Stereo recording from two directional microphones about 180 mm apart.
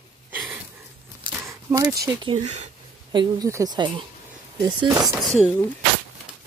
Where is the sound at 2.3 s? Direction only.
40° right (ahead or behind).